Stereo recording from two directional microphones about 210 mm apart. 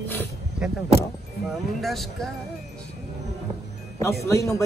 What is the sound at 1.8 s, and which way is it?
Speech, centre (ahead or behind).